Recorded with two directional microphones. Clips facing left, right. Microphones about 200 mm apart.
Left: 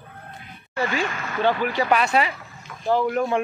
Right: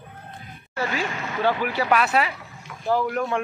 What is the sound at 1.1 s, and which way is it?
Speech, 20° right (ahead or behind).